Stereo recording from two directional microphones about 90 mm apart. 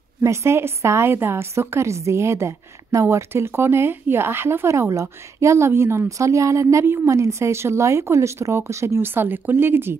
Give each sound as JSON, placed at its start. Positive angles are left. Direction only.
{"t": 0.2, "sound": "a woman's voice", "side_deg": -30}